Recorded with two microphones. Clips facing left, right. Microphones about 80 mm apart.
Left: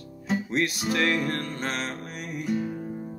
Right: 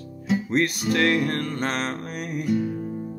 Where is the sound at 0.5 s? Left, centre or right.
Right.